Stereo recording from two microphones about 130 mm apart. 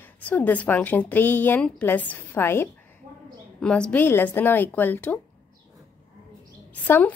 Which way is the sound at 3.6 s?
5° left (ahead or behind).